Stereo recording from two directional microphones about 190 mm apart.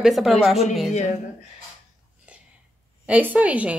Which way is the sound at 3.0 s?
10° right (ahead or behind).